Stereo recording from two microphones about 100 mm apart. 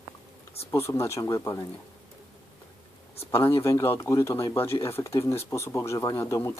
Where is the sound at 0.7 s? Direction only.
25° left (ahead or behind).